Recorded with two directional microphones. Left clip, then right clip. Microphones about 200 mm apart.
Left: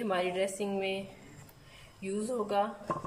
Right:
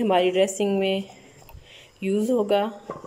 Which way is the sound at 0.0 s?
40° right (ahead or behind).